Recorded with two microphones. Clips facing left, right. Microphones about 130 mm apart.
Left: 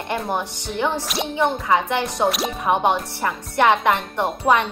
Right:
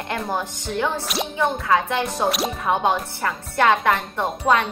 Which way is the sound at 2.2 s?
Centre (ahead or behind).